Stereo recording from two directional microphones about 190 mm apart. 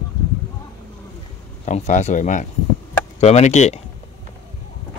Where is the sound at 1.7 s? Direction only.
40° left (ahead or behind).